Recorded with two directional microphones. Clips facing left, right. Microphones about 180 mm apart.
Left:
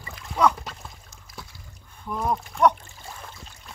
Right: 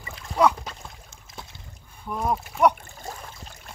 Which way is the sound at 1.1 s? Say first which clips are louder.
Right 1 dB; 25° right (ahead or behind).